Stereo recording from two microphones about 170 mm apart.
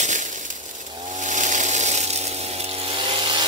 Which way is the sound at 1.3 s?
45° right (ahead or behind).